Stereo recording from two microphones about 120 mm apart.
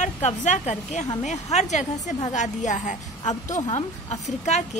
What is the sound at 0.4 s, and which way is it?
A woman's voice, 80° left.